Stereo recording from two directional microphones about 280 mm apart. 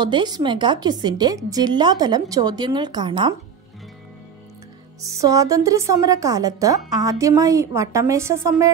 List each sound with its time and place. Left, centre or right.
0.0 s a woman's voice: centre
5.0 s a woman's voice: centre